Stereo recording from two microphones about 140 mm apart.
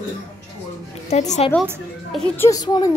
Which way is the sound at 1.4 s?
45° left (ahead or behind).